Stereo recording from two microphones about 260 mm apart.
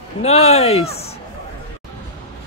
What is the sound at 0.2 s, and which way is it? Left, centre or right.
Speech, left.